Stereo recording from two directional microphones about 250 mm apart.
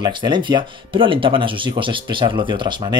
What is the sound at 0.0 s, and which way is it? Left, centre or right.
Speech, centre.